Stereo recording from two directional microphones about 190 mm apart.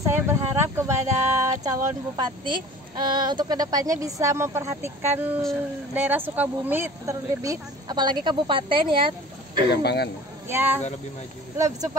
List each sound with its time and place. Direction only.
0.0 s a sound: 15° right (ahead or behind)
1.6 s speech: 20° right (ahead or behind)
5.4 s speech: centre (ahead or behind)
6.0 s speech: 10° right (ahead or behind); by 9.1 s 25° right (ahead or behind)
9.7 s speech: 60° left (ahead or behind)
10.5 s speech: 10° right (ahead or behind)